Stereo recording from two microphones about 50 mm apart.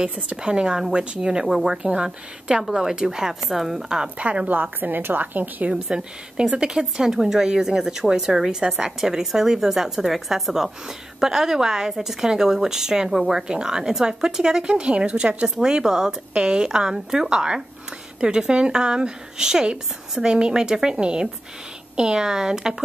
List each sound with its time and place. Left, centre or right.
0.0 s a woman's voice: right; by 4.0 s centre
4.0 s a woman's voice: right
5.7 s a woman's voice: centre